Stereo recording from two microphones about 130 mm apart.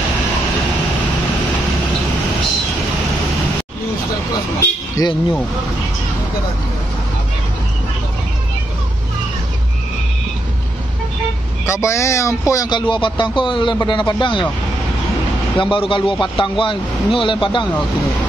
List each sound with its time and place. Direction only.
4.6 s vehicle: 25° left (ahead or behind)
11.6 s speech: 20° left (ahead or behind); by 14.5 s 35° left (ahead or behind)
15.6 s speech: 40° left (ahead or behind)